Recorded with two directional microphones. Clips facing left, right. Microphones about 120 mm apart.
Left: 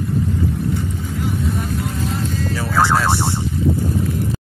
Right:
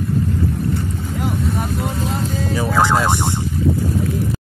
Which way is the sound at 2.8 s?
15° right (ahead or behind).